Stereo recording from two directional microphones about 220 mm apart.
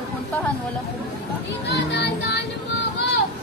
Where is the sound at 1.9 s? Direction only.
50° left (ahead or behind).